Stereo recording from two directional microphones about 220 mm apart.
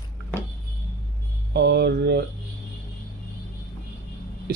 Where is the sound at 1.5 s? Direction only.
50° right (ahead or behind).